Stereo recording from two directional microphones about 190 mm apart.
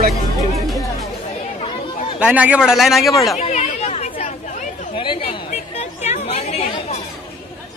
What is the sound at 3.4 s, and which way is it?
Chatter, 40° left (ahead or behind).